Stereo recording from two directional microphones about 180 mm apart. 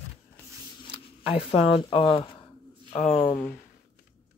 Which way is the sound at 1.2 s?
30° left (ahead or behind).